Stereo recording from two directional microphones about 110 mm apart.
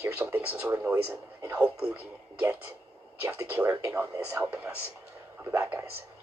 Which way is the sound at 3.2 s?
20° right (ahead or behind).